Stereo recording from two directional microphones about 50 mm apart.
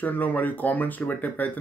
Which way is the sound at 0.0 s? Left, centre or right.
Left.